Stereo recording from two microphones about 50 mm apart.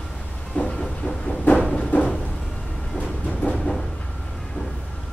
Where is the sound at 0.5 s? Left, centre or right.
Centre.